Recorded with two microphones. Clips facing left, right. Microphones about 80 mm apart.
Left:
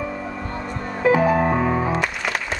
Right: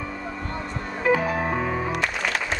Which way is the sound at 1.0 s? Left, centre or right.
Centre.